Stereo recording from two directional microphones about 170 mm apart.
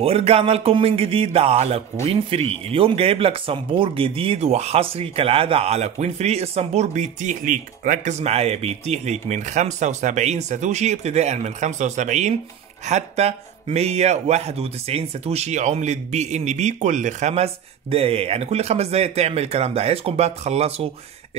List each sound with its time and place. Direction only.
0.0 s speech: 35° right (ahead or behind)